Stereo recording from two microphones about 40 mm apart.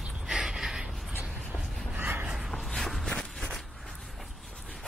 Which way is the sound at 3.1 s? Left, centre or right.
Centre.